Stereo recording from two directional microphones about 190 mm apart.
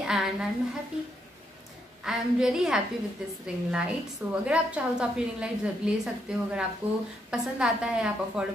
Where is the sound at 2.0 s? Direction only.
5° right (ahead or behind).